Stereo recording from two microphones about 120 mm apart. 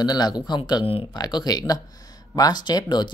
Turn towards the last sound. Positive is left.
turn(degrees=35)  # may be behind; listen again after turning